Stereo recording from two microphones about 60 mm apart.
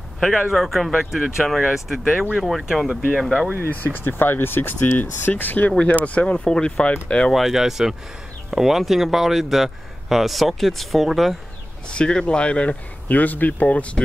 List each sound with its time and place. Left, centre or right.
0.5 s speech: centre
3.5 s speech: left
5.7 s speech: centre
7.3 s speech: centre
11.9 s speech: centre